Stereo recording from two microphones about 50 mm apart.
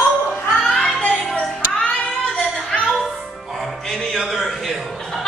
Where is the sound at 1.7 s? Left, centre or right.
Left.